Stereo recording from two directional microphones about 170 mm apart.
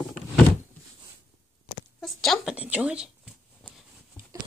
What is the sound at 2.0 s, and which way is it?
Speech, centre (ahead or behind).